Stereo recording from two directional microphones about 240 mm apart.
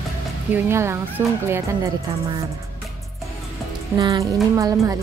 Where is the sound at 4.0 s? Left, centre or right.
Centre.